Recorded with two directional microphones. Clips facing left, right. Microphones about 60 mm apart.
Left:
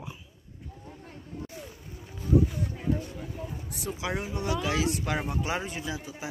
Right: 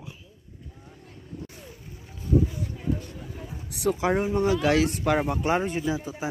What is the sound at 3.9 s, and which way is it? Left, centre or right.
Speech, right.